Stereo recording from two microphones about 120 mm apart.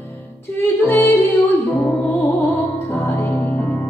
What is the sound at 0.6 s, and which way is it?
Music, 20° left (ahead or behind).